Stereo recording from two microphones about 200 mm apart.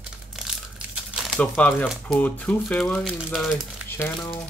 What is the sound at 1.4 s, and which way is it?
Speech, 10° left (ahead or behind).